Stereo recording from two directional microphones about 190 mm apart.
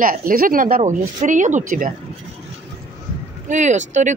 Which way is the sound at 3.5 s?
40° right (ahead or behind).